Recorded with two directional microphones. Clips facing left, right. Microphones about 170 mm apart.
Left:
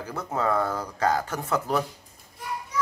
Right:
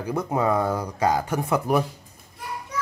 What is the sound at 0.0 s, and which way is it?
Speech, 15° right (ahead or behind).